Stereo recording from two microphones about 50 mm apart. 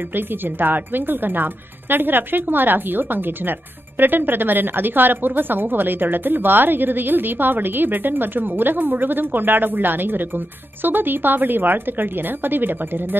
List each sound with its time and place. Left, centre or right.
0.1 s a woman's voice: right